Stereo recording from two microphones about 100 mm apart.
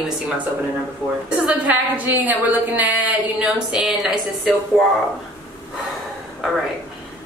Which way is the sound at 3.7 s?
5° right (ahead or behind).